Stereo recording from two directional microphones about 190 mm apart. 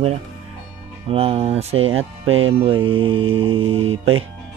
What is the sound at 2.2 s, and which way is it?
Speech, 90° right.